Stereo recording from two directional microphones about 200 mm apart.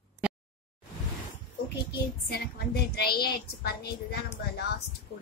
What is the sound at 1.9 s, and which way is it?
Speech, 55° left (ahead or behind).